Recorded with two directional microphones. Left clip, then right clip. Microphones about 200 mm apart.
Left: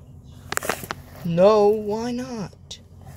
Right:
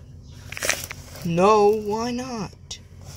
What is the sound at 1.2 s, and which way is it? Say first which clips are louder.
Speech: left 1 dB; 25° right (ahead or behind).